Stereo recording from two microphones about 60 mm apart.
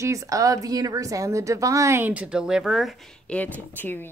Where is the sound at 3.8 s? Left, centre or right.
Left.